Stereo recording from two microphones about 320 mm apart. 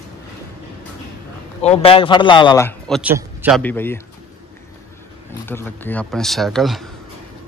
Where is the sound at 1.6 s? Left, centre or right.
Centre.